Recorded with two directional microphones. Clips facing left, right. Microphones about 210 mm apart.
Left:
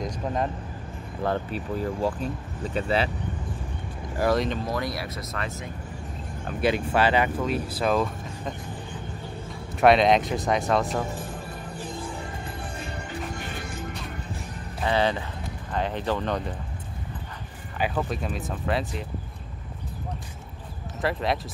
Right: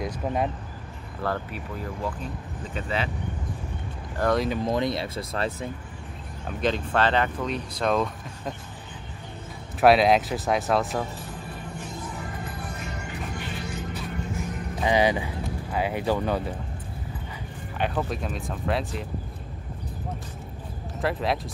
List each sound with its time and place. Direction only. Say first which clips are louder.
0.0 s speech: right 1 dB; 10° right (ahead or behind)
1.2 s speech: left 3 dB; 25° left (ahead or behind)
4.2 s speech: even; 5° left (ahead or behind)
4.6 s speech: right 4 dB; 25° right (ahead or behind)
6.6 s speech: left 1 dB; 10° left (ahead or behind)
9.8 s speech: even; 5° right (ahead or behind)
11.7 s music: left 3 dB; 30° left (ahead or behind)
13.4 s music: right 1 dB; 50° left (ahead or behind)
14.8 s speech: right 2 dB; 15° right (ahead or behind)
17.7 s speech: even; centre (ahead or behind)
21.0 s speech: even; centre (ahead or behind)